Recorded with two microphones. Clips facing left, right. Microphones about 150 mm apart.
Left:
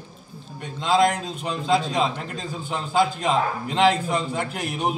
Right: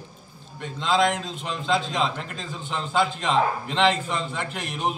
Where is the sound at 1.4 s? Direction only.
5° left (ahead or behind).